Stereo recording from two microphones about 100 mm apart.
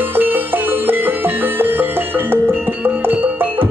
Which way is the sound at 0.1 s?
20° right (ahead or behind).